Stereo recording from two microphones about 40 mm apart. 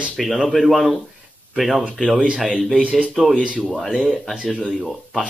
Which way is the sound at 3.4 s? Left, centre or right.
Right.